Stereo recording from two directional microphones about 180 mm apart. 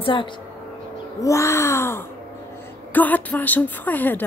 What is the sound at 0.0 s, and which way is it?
Speech, 25° left (ahead or behind).